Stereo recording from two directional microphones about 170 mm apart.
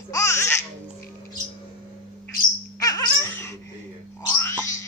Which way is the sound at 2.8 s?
20° left (ahead or behind).